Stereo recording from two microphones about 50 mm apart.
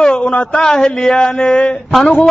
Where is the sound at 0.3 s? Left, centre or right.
Centre.